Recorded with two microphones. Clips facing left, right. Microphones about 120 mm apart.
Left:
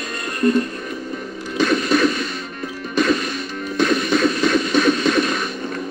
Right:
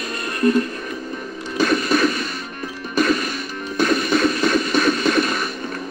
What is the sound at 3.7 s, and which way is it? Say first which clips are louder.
Music: even; 45° right (ahead or behind).